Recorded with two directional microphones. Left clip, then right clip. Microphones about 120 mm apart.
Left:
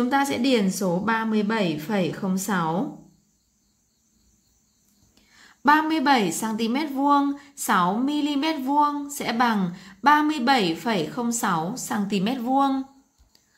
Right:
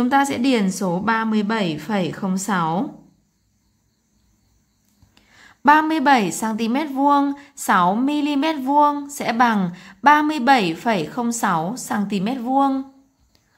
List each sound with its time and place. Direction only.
0.0 s a woman's voice: 25° right (ahead or behind)
5.1 s a woman's voice: 25° right (ahead or behind)